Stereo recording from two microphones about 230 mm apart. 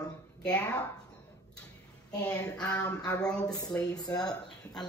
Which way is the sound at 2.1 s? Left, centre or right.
Centre.